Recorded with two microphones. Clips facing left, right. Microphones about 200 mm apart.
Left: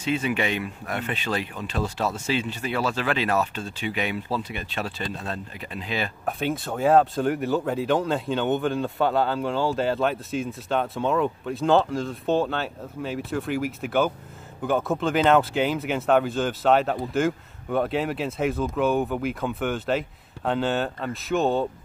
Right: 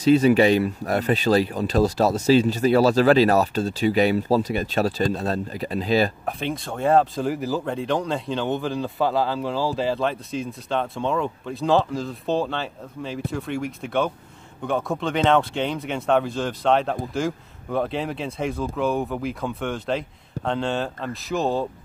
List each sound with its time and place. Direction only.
0.0 s speech: 40° right (ahead or behind)
6.2 s speech: centre (ahead or behind)